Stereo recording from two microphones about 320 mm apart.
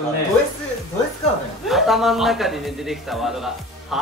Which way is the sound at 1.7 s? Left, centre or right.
Centre.